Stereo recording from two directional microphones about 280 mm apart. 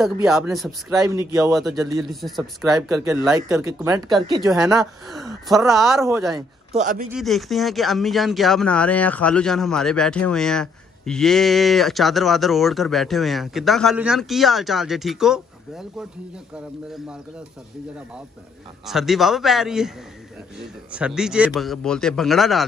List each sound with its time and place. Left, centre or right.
0.0 s speech: centre
1.0 s speech: centre
1.5 s speech: centre
1.8 s speech: centre
2.0 s speech: centre
4.6 s speech: centre
6.7 s a man's voice: right
7.1 s speech: centre
18.9 s speech: centre